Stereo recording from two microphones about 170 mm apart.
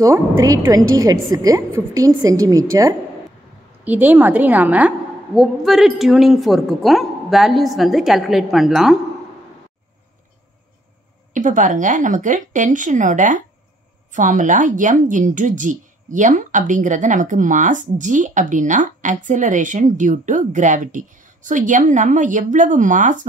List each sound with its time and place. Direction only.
0.0 s a woman's voice: 20° right (ahead or behind); by 8.9 s centre (ahead or behind)
11.3 s speech: 50° right (ahead or behind)